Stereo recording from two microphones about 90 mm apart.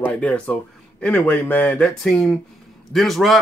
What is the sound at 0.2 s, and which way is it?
Speech, 15° left (ahead or behind).